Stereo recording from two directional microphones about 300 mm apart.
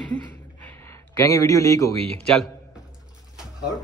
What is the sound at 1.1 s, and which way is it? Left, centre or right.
Speech, centre.